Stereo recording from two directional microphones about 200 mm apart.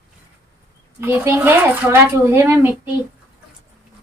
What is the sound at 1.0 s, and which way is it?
Speech, 10° right (ahead or behind).